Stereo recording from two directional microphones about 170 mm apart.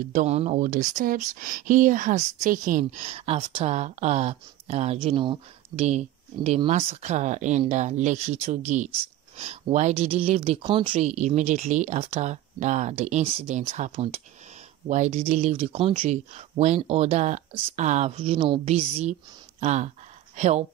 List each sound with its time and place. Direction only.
0.1 s speech: 40° right (ahead or behind)
19.6 s speech: 40° right (ahead or behind)